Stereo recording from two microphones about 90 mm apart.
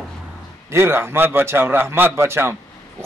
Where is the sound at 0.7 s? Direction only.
25° right (ahead or behind).